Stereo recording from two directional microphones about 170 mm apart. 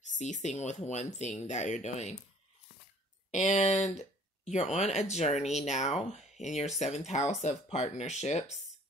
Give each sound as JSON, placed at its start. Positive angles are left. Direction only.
{"t": 0.2, "sound": "speech", "side_deg": 45}
{"t": 3.3, "sound": "speech", "side_deg": 40}